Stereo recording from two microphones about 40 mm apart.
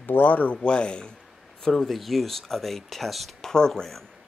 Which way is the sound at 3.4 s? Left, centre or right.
Centre.